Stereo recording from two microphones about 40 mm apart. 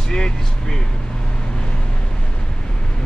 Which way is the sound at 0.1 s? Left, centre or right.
Centre.